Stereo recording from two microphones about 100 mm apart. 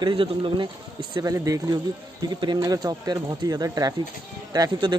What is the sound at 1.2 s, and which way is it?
Speech, 35° right (ahead or behind).